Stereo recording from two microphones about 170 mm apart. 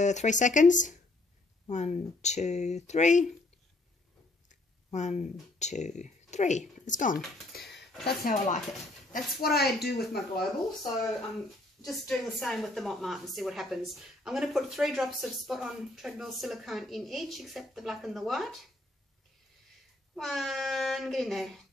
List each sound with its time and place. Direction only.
0.0 s speech: 45° left (ahead or behind)
4.5 s speech: 45° left (ahead or behind)
7.5 s a sound: 75° left (ahead or behind)
8.2 s speech: 55° left (ahead or behind)
11.8 s speech: centre (ahead or behind)
20.2 s speech: centre (ahead or behind)